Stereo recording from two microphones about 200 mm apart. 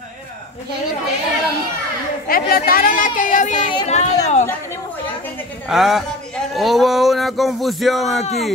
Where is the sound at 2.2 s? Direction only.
45° left (ahead or behind).